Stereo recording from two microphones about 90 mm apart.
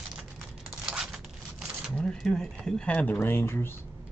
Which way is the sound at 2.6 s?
10° left (ahead or behind).